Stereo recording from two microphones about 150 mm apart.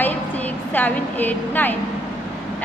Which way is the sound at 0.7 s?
10° left (ahead or behind).